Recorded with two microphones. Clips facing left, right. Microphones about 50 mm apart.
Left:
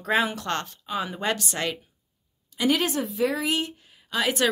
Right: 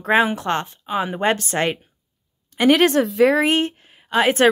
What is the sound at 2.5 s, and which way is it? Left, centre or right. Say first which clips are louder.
Speech: right 9 dB; right.